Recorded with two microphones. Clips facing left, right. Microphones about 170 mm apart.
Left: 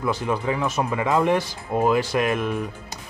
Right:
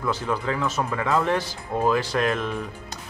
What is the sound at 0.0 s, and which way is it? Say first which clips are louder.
Speech: left 2 dB; 15° left (ahead or behind).